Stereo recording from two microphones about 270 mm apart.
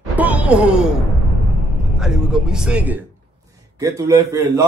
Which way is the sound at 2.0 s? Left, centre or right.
Centre.